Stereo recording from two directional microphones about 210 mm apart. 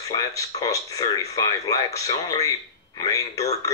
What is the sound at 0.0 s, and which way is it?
Speech, 15° left (ahead or behind).